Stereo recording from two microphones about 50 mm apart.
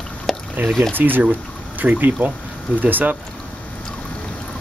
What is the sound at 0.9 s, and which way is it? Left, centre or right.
Speech, right.